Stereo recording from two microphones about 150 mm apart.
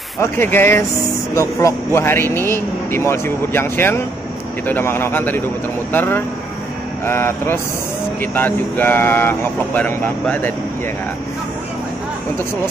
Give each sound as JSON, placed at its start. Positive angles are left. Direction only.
{"t": 0.2, "sound": "a man's voice", "side_deg": 15}